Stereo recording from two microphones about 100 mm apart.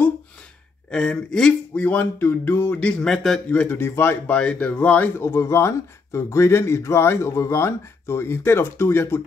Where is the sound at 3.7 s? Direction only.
25° left (ahead or behind).